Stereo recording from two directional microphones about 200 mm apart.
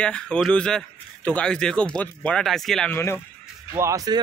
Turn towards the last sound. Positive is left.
turn(degrees=-20)  # may be behind; listen again after turning